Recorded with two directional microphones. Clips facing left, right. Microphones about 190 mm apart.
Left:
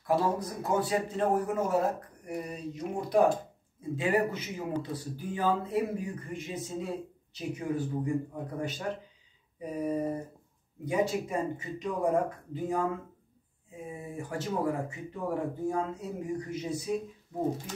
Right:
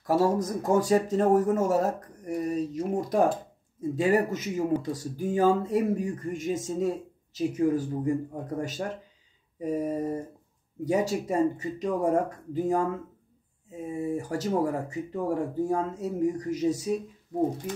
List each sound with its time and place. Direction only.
0.0 s speech: 45° right (ahead or behind)
13.9 s speech: 40° right (ahead or behind)